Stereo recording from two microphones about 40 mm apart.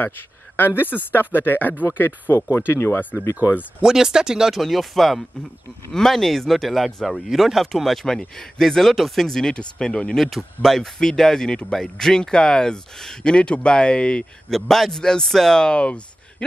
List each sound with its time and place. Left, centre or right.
0.6 s speech: left
2.5 s speech: left
3.8 s speech: centre
4.6 s speech: centre
8.0 s speech: centre
9.5 s speech: left
10.1 s speech: centre; by 14.2 s left
14.5 s speech: centre
15.0 s speech: centre
15.8 s a sound: left